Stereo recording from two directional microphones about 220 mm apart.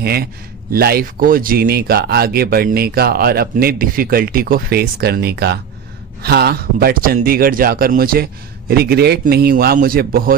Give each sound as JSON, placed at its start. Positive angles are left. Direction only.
{"t": 0.0, "sound": "a man's voice", "side_deg": -45}